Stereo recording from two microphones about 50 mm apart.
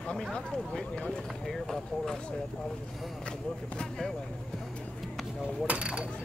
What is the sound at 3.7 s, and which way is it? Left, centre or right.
Speech, centre.